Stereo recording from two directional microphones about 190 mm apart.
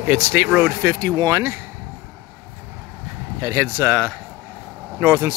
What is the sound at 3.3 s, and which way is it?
Speech, 15° right (ahead or behind).